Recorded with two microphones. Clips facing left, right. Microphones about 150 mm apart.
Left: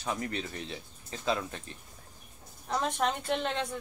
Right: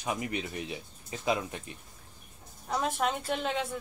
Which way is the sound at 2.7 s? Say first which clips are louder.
Even; 5° right (ahead or behind).